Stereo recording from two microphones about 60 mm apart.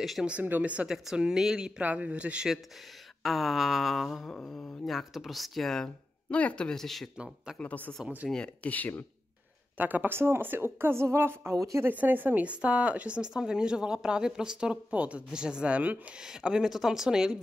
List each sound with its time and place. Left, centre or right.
0.4 s speech: right
0.8 s speech: centre
1.8 s speech: right
3.2 s a sound: centre
4.3 s speech: centre
4.8 s a sound: centre
6.3 s speech: centre
7.6 s speech: left
9.8 s a woman's voice: right
11.5 s speech: right
11.8 s speech: right
16.2 s speech: centre